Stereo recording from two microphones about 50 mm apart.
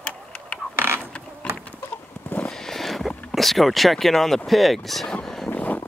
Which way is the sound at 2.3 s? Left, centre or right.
Left.